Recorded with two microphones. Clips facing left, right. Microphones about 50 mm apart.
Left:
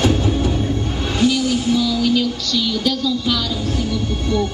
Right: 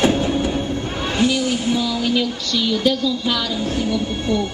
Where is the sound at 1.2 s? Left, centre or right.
Centre.